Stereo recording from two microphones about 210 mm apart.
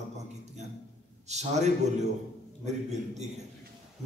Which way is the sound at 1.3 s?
35° right (ahead or behind).